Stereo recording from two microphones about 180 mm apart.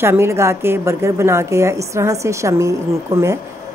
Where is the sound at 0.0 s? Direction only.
15° right (ahead or behind).